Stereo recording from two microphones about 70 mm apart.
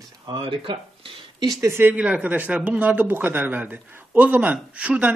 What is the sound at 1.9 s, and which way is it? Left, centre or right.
A man's voice, centre.